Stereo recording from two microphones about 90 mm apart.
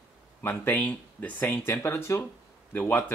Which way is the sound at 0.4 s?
25° left (ahead or behind).